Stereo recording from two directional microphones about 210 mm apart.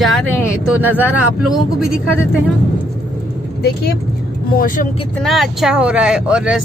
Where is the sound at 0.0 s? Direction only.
Centre (ahead or behind).